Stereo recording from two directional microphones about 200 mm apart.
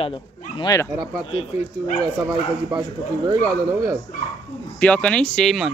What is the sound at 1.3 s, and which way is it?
Speech, 35° left (ahead or behind).